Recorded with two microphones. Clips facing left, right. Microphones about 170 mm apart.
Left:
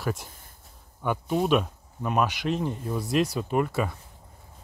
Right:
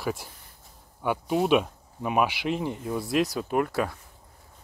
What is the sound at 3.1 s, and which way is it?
Speech, centre (ahead or behind).